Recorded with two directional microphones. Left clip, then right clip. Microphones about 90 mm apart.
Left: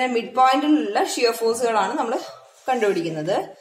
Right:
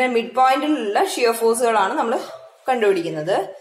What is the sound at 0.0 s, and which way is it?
A woman's voice, 35° left (ahead or behind).